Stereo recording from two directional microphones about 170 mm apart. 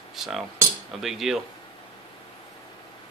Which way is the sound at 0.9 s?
Centre (ahead or behind).